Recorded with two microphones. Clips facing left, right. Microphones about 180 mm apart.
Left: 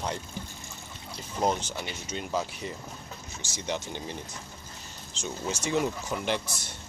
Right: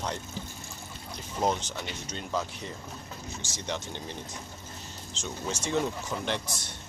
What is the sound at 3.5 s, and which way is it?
Speech, 5° left (ahead or behind).